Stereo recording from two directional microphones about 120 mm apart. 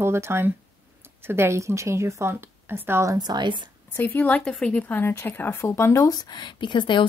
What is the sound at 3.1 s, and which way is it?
Speech, 35° right (ahead or behind).